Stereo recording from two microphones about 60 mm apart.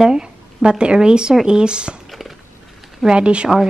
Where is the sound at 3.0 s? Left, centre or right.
Centre.